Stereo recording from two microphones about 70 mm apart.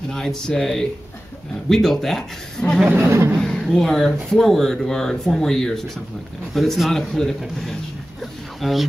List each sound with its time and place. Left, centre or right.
0.1 s speech: centre
2.9 s speech: right
3.3 s speech: centre
8.2 s a sound: centre